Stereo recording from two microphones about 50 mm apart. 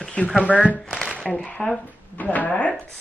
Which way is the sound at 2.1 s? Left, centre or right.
Left.